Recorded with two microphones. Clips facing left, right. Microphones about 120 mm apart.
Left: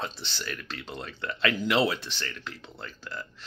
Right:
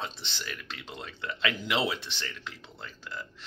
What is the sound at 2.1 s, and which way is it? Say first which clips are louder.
Speech: left 2 dB; 20° right (ahead or behind).